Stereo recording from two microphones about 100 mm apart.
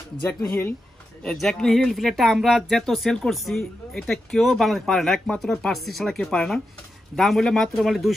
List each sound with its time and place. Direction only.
0.3 s speech: 20° left (ahead or behind)
1.2 s speech: 5° left (ahead or behind)